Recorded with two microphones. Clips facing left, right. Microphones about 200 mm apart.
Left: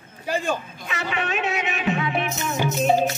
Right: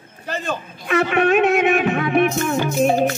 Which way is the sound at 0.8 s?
55° right (ahead or behind).